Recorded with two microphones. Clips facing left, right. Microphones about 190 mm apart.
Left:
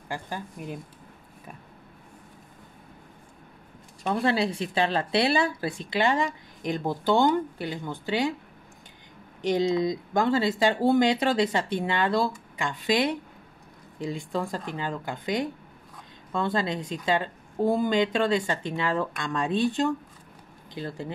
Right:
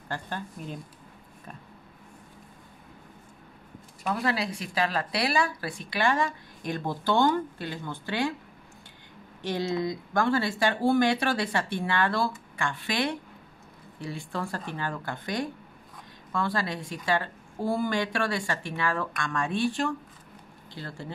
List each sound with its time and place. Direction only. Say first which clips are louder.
0.1 s speech: left 1 dB; 10° left (ahead or behind)
4.0 s a woman's voice: left 4 dB; 25° left (ahead or behind)
9.4 s a woman's voice: left 5 dB; 15° left (ahead or behind)